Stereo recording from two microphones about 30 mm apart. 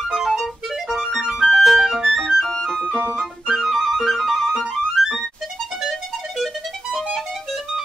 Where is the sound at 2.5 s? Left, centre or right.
Centre.